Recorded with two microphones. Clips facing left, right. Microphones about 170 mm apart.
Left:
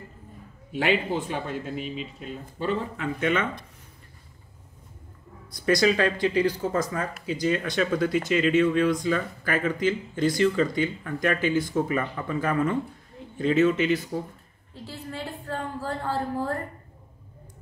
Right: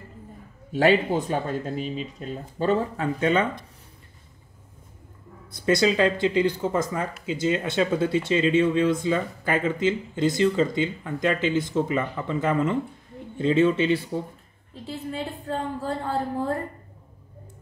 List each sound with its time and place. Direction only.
0.7 s speech: 40° right (ahead or behind)
5.7 s speech: 25° right (ahead or behind)
14.7 s speech: 20° right (ahead or behind)